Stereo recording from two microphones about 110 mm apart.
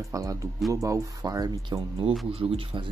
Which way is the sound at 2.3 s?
55° right (ahead or behind).